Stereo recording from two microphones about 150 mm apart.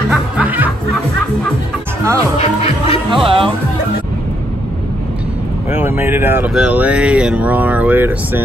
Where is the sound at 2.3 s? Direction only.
45° left (ahead or behind).